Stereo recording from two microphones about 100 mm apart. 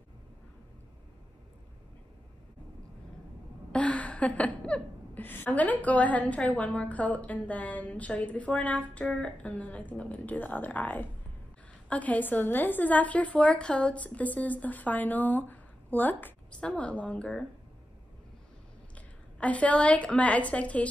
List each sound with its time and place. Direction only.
3.7 s a woman's voice: 15° left (ahead or behind)
18.9 s a woman's voice: 15° left (ahead or behind)